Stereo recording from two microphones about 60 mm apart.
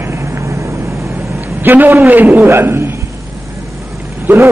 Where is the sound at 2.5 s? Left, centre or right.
Right.